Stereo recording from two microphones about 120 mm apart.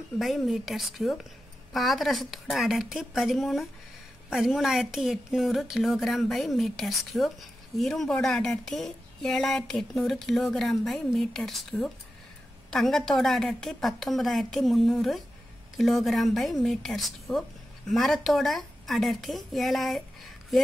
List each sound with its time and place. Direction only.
0.2 s a woman's voice: centre (ahead or behind)